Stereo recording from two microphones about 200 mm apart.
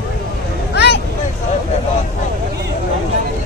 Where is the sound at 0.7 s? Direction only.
55° left (ahead or behind).